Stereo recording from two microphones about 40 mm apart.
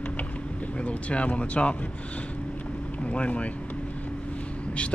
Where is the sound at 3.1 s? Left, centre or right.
Left.